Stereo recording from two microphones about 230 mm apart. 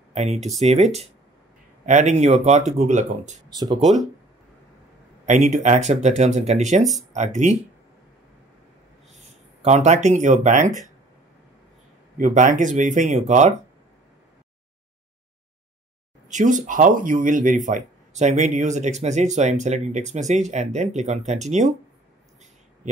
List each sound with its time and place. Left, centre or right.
0.1 s speech: right
1.9 s speech: right
3.4 s speech: centre
5.2 s speech: right
9.6 s speech: right
12.2 s speech: right
16.3 s speech: right